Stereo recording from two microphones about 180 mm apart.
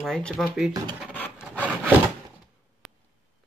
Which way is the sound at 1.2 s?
10° left (ahead or behind).